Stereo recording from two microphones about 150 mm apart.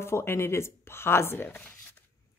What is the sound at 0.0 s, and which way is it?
Speech, 15° left (ahead or behind).